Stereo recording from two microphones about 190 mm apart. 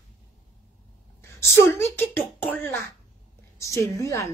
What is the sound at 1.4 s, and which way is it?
A woman's voice, 15° left (ahead or behind).